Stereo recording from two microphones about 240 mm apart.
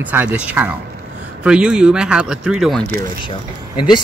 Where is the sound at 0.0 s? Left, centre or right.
Centre.